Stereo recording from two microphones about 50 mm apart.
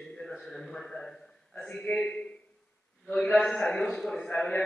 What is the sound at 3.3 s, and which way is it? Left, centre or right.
Speech, centre.